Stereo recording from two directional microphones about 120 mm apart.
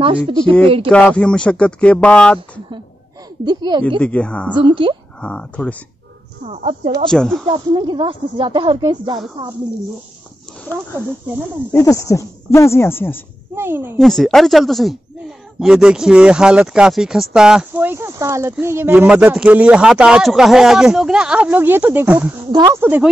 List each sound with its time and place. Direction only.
0.0 s speech: 45° right (ahead or behind)
0.8 s speech: 10° left (ahead or behind)
3.4 s speech: 40° right (ahead or behind)
4.0 s speech: 10° left (ahead or behind)
4.6 s speech: 45° right (ahead or behind)
5.2 s speech: 10° left (ahead or behind)
6.4 s speech: 65° right (ahead or behind)
7.1 s speech: 5° left (ahead or behind)
7.4 s speech: 45° right (ahead or behind)
11.7 s speech: 25° left (ahead or behind)
13.6 s a woman's voice: 20° right (ahead or behind)
13.9 s speech: centre (ahead or behind)
17.8 s speech: 20° right (ahead or behind)